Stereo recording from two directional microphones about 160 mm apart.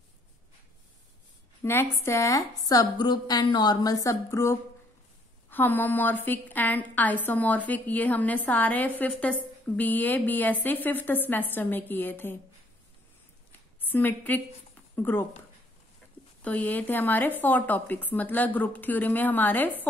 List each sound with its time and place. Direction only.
1.6 s a woman's voice: 15° left (ahead or behind)
13.5 s a sound: 10° left (ahead or behind)
15.0 s a woman's voice: 15° left (ahead or behind)
16.4 s a woman's voice: 10° left (ahead or behind)